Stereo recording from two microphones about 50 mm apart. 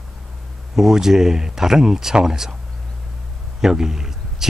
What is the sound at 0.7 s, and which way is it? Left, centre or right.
Speech, centre.